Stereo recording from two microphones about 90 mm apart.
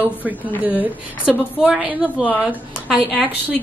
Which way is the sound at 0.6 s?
15° right (ahead or behind).